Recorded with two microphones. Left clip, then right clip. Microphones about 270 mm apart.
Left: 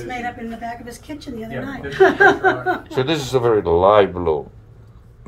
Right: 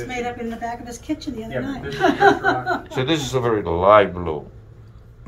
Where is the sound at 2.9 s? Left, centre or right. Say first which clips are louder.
Left 3 dB; left.